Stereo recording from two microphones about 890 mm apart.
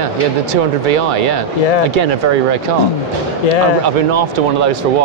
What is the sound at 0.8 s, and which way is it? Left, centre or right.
Speech, right.